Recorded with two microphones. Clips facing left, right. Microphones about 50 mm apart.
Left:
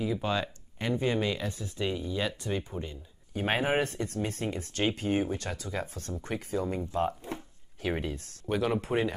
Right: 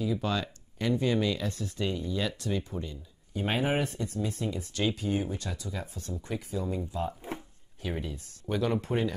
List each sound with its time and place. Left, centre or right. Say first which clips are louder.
0.0 s speech: even; left
3.3 s speech: left 1 dB; left
8.5 s speech: even; centre